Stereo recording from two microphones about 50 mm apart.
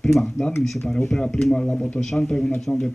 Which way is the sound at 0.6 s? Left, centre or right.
Centre.